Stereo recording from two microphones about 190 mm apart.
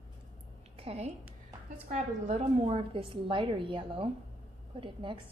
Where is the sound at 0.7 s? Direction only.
30° right (ahead or behind).